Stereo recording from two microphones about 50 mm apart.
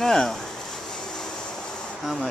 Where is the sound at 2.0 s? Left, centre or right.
Centre.